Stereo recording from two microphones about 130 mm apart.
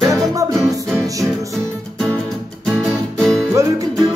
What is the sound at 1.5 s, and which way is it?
Music, 5° left (ahead or behind).